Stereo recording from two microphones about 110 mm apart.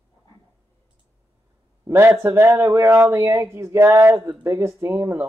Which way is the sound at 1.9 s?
20° right (ahead or behind).